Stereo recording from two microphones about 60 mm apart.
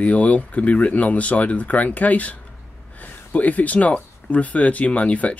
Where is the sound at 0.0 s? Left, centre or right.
Left.